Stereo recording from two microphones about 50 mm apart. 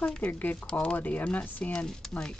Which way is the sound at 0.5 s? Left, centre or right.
Centre.